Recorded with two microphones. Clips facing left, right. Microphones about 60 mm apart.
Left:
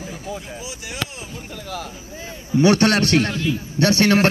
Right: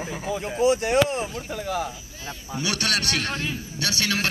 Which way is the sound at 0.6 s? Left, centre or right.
Right.